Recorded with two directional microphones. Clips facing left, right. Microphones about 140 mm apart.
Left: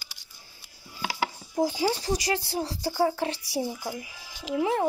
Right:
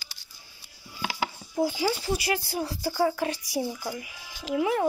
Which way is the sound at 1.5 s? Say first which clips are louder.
Left 1 dB; 35° left (ahead or behind).